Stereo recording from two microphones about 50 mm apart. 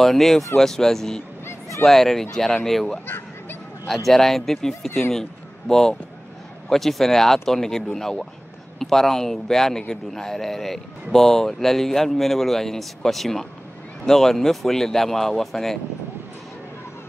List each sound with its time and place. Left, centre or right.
0.0 s a man's voice: centre
3.1 s a sound: left
3.8 s a man's voice: centre